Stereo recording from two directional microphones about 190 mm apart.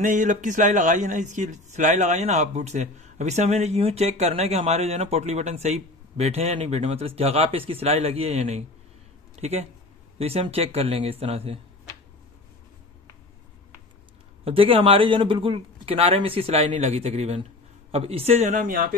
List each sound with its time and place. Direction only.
0.0 s speech: 40° right (ahead or behind)
14.4 s speech: 30° right (ahead or behind); by 18.9 s 45° right (ahead or behind)